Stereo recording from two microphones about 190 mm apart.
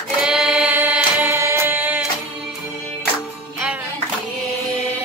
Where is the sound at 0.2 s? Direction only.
5° right (ahead or behind).